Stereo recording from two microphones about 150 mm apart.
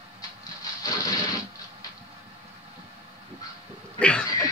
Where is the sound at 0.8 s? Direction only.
25° left (ahead or behind).